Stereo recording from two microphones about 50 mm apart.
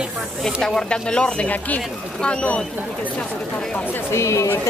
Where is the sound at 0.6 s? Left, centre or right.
Centre.